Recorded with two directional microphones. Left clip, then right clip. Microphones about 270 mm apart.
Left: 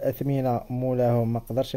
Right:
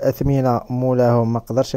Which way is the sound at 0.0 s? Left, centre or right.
Right.